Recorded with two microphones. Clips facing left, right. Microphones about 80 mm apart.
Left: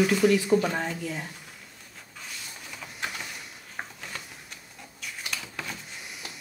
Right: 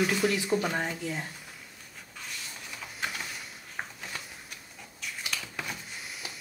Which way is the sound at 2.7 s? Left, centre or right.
Centre.